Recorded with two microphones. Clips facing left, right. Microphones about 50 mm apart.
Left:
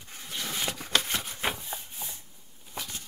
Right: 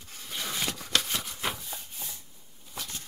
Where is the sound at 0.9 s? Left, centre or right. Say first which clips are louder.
Left 2 dB; left.